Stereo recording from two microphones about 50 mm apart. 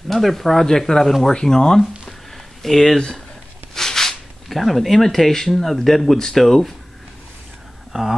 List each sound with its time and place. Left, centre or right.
0.1 s speech: centre
7.9 s speech: centre